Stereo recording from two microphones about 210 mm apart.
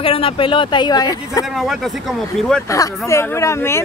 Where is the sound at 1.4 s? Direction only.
Centre (ahead or behind).